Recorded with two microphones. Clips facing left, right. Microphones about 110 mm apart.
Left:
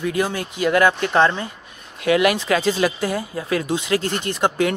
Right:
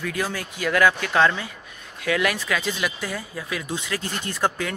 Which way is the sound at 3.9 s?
60° left (ahead or behind).